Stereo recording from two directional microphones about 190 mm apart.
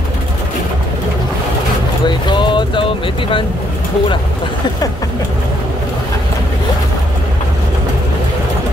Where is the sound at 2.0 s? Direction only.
25° left (ahead or behind).